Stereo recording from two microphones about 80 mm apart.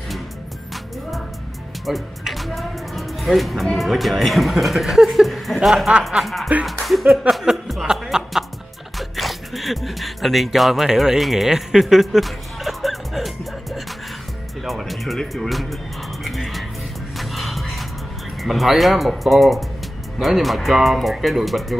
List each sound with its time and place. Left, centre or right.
1.9 s speech: centre
8.9 s music: centre
14.6 s speech: centre
16.3 s music: centre
18.4 s speech: centre